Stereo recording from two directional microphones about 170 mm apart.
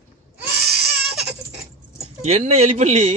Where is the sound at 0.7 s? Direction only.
70° right (ahead or behind).